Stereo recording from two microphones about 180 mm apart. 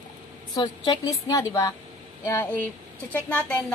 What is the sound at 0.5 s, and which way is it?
A woman's voice, 25° left (ahead or behind).